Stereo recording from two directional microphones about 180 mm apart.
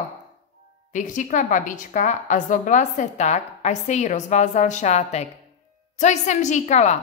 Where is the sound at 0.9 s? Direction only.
45° left (ahead or behind).